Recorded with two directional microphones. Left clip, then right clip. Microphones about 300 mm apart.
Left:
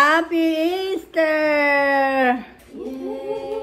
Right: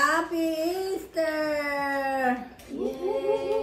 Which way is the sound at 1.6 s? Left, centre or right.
Centre.